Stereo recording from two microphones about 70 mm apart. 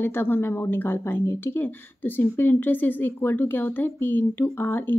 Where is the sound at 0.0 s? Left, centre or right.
Left.